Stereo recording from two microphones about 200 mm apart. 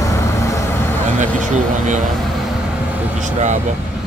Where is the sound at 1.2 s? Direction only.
35° right (ahead or behind).